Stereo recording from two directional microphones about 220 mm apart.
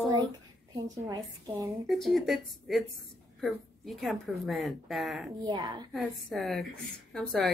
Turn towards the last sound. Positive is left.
turn(degrees=0)  # may be behind; listen again after turning